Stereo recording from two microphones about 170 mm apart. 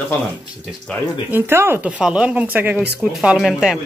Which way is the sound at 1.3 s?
15° right (ahead or behind).